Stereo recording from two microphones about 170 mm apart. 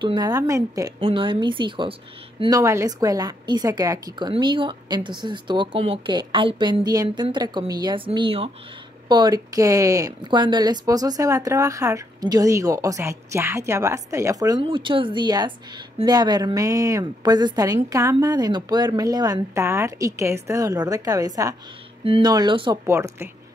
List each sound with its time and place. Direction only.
0.0 s speech: 25° right (ahead or behind)
1.0 s speech: 30° right (ahead or behind)
22.0 s speech: 35° right (ahead or behind)
22.8 s speech: 15° right (ahead or behind)